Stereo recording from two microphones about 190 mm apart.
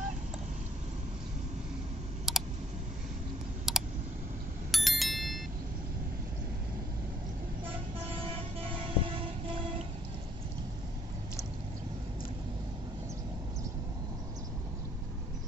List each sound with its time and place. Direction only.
2.3 s clicking: centre (ahead or behind)
3.7 s computer keyboard: centre (ahead or behind)
4.6 s a sound: centre (ahead or behind)
7.6 s vehicle: 30° right (ahead or behind)